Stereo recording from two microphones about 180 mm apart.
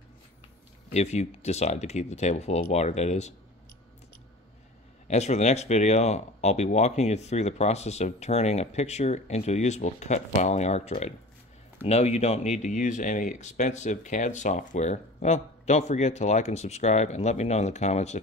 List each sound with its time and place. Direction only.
0.9 s speech: 40° left (ahead or behind)
5.0 s speech: 40° left (ahead or behind)